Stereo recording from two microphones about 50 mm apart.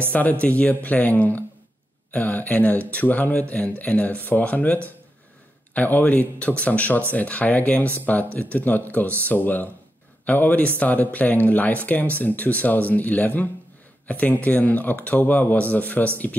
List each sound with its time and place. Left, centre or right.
0.1 s speech: left